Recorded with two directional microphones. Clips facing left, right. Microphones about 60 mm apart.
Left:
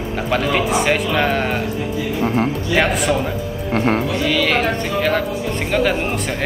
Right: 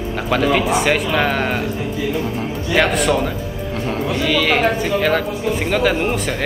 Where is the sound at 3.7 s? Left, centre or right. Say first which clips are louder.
Left 7 dB; left.